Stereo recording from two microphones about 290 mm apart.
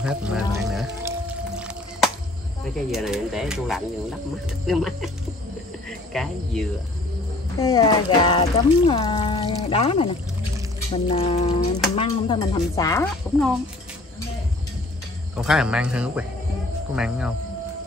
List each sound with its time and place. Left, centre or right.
0.0 s speech: centre
0.7 s whale vocalization: centre
2.6 s speech: centre
7.5 s speech: centre
11.1 s a sound: left
11.9 s speech: centre
15.3 s speech: centre